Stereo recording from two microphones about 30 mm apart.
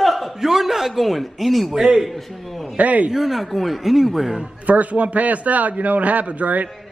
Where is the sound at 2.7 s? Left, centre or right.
Right.